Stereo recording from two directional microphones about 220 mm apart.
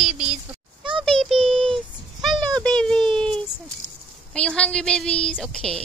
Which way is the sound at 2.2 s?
Centre (ahead or behind).